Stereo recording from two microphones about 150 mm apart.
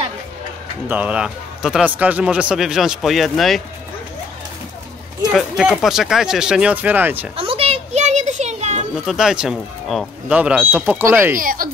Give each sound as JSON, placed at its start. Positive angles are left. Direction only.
{"t": 0.8, "sound": "a man's voice", "side_deg": -10}
{"t": 5.3, "sound": "a man's voice", "side_deg": -5}
{"t": 7.3, "sound": "a sound", "side_deg": -40}
{"t": 9.0, "sound": "speech", "side_deg": -5}
{"t": 11.3, "sound": "speech", "side_deg": -70}